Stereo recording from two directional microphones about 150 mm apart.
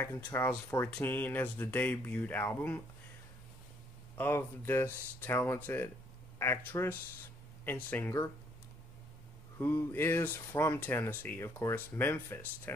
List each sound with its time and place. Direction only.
0.0 s speech: 15° left (ahead or behind)
4.2 s speech: 15° left (ahead or behind)
9.6 s speech: 15° left (ahead or behind)